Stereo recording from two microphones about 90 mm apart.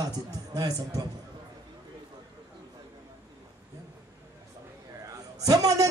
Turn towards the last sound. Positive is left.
turn(degrees=-40)  # may be behind; listen again after turning